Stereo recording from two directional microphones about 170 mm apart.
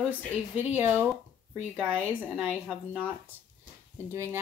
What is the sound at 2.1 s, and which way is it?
Speech, 10° left (ahead or behind).